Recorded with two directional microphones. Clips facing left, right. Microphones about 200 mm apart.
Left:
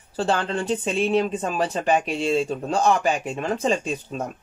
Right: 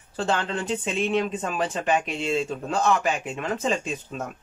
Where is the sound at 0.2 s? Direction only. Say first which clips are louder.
Left 3 dB; 35° left (ahead or behind).